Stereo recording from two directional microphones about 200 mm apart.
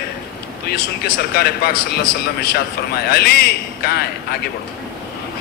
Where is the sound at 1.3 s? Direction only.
50° left (ahead or behind).